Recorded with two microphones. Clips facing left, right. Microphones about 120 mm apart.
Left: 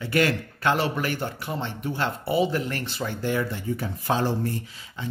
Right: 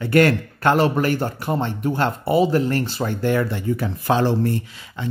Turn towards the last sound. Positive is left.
turn(degrees=-75)  # may be behind; listen again after turning